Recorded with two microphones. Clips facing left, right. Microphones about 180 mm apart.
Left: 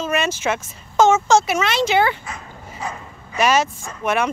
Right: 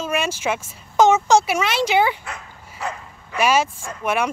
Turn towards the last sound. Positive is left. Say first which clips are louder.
# left 1 dB
turn(degrees=-10)  # may be behind; listen again after turning